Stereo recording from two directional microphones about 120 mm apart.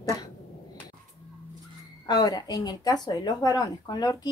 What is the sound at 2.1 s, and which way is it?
Speech, 35° left (ahead or behind).